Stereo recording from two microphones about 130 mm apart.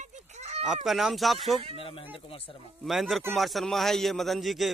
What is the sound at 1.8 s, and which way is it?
Speech, 45° left (ahead or behind).